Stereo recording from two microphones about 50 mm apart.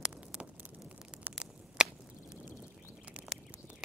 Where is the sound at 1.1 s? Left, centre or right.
Centre.